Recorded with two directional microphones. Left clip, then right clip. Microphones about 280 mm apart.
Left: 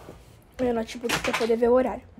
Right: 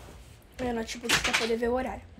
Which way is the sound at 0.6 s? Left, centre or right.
Centre.